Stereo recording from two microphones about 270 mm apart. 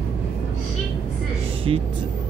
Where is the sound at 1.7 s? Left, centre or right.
Centre.